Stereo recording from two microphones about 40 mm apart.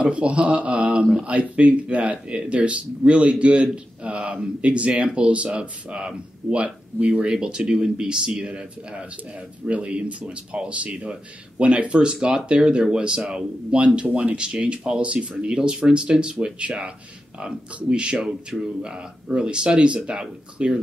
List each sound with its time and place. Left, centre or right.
0.0 s a man's voice: right